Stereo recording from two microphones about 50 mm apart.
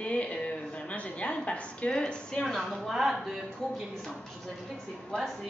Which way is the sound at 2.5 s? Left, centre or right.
Centre.